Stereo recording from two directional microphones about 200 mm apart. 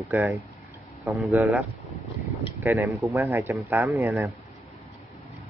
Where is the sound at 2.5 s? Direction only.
10° right (ahead or behind).